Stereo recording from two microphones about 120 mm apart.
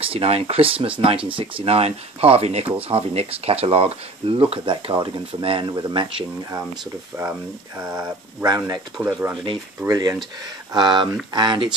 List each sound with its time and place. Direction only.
0.0 s speech: 55° right (ahead or behind)
8.4 s speech: 25° right (ahead or behind)
9.8 s speech: 30° right (ahead or behind)